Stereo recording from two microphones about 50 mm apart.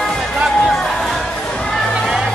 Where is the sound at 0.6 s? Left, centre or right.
Centre.